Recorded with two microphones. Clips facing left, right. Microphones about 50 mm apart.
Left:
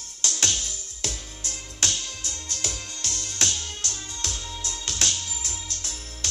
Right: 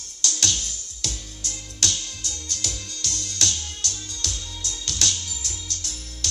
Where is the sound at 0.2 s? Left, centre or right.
Left.